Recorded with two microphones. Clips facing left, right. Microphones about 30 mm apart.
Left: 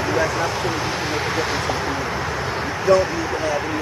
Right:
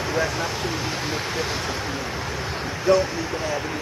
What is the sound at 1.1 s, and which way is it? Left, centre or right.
Speech, centre.